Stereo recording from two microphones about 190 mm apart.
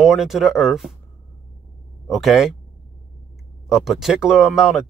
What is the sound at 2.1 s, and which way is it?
Speech, centre (ahead or behind).